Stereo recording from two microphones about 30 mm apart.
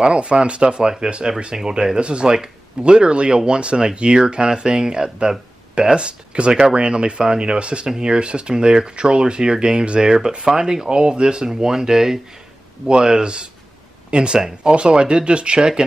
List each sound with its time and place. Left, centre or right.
0.0 s speech: right
2.2 s speech: right
2.8 s speech: right
10.4 s speech: right